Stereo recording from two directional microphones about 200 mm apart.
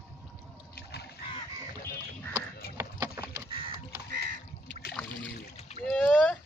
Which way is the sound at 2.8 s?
15° right (ahead or behind).